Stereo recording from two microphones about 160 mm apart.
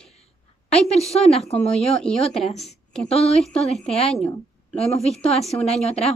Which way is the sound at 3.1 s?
40° left (ahead or behind).